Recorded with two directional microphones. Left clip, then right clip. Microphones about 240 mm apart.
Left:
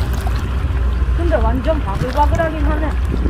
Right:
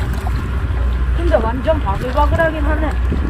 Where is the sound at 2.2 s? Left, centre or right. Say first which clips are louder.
Left 1 dB; right.